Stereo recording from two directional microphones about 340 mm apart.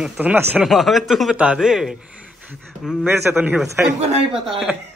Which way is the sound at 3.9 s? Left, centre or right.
Centre.